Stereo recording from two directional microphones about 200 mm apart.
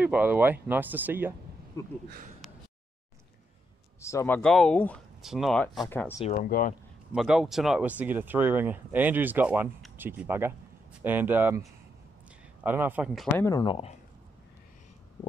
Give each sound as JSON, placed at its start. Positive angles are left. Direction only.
{"t": 0.0, "sound": "speech", "side_deg": -10}
{"t": 1.8, "sound": "speech", "side_deg": 15}
{"t": 4.0, "sound": "speech", "side_deg": 15}
{"t": 4.4, "sound": "speech", "side_deg": 5}
{"t": 6.1, "sound": "speech", "side_deg": 35}
{"t": 7.1, "sound": "speech", "side_deg": -5}
{"t": 12.6, "sound": "speech", "side_deg": -10}
{"t": 13.4, "sound": "speech", "side_deg": 20}